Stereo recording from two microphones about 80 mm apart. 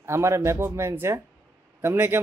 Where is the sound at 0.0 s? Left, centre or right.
Right.